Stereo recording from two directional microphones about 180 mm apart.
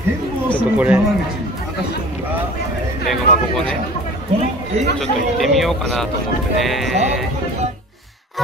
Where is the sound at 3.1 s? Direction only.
5° left (ahead or behind).